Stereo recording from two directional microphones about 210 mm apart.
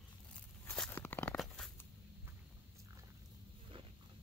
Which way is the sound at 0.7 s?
10° left (ahead or behind).